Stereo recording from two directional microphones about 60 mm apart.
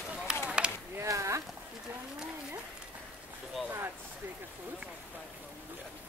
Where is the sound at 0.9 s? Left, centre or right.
Right.